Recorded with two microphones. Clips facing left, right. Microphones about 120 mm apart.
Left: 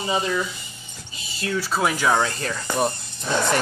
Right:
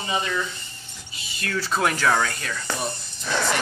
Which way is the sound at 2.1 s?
20° left (ahead or behind).